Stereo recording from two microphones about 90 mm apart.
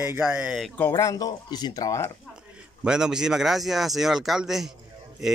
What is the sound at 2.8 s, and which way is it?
Speech, 10° right (ahead or behind).